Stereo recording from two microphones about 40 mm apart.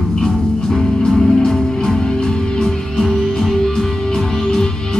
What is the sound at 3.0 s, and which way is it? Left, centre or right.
Music, centre.